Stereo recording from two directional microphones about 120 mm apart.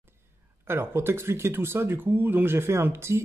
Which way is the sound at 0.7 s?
20° right (ahead or behind).